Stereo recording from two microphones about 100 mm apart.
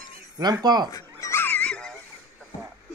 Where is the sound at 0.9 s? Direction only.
35° left (ahead or behind).